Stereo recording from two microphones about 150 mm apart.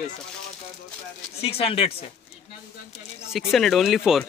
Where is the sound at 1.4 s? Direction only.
40° left (ahead or behind).